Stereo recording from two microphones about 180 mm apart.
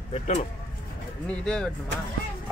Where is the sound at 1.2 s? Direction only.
5° left (ahead or behind).